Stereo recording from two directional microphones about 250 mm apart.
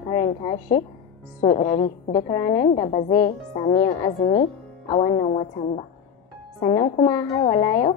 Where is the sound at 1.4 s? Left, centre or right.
Left.